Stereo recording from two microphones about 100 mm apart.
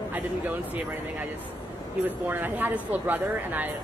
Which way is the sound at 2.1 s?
20° right (ahead or behind).